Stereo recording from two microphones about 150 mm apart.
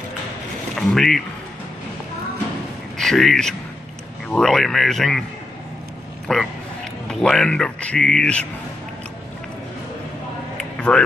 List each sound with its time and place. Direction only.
0.7 s speech: 5° left (ahead or behind)
3.0 s speech: centre (ahead or behind)
6.2 s a man's voice: 5° left (ahead or behind)
10.6 s a sound: 5° left (ahead or behind)